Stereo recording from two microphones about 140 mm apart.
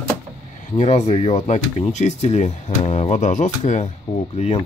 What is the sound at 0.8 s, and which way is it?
Speech, 50° left (ahead or behind).